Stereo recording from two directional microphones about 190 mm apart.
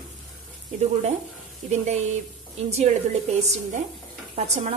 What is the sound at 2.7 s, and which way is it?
Speech, 35° right (ahead or behind).